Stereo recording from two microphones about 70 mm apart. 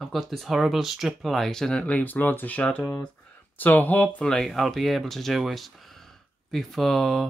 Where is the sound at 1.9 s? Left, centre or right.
Left.